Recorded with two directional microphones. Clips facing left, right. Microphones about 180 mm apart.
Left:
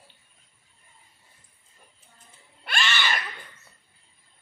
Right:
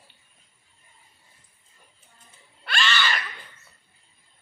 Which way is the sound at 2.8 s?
50° left (ahead or behind).